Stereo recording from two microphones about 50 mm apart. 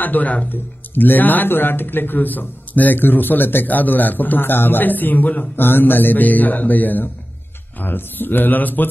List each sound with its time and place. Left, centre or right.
0.0 s speech: left